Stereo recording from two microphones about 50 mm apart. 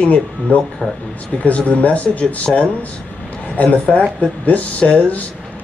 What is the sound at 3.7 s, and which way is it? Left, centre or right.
Speech, left.